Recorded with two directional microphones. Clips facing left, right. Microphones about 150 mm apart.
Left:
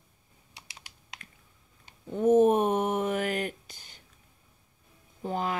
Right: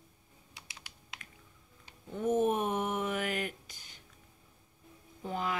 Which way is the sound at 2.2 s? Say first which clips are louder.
Left 8 dB; 35° left (ahead or behind).